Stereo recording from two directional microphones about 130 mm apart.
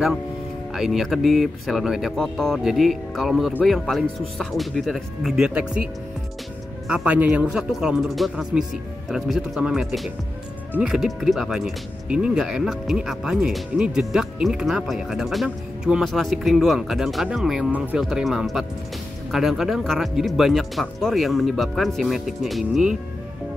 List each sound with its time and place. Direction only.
0.7 s speech: centre (ahead or behind)
6.9 s speech: 10° right (ahead or behind)